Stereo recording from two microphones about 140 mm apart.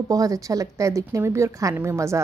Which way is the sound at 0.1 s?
25° right (ahead or behind).